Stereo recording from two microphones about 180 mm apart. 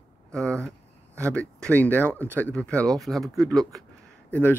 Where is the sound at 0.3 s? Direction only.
5° left (ahead or behind).